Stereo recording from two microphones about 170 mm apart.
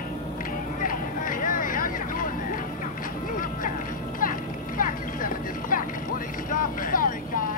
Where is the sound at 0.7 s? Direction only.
55° left (ahead or behind).